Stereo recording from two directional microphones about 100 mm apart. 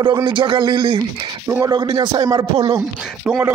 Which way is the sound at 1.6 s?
40° right (ahead or behind).